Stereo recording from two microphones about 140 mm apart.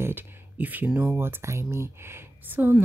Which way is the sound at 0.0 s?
15° right (ahead or behind).